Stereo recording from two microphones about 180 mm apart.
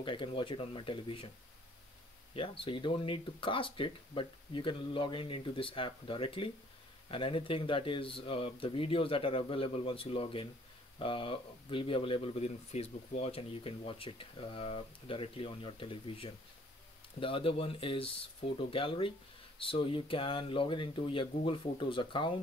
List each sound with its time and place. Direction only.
0.0 s speech: 30° left (ahead or behind)
2.3 s speech: 30° left (ahead or behind)